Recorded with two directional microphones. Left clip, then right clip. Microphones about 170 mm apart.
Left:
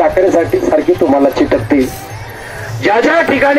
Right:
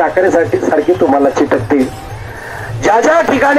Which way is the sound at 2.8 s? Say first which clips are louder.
Right 1 dB; 50° right (ahead or behind).